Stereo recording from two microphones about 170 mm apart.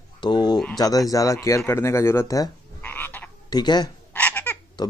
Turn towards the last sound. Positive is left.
turn(degrees=25)  # may be behind; listen again after turning